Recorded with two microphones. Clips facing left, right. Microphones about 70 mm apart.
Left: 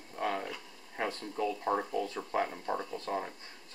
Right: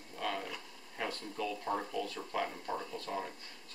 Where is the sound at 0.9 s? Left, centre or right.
Left.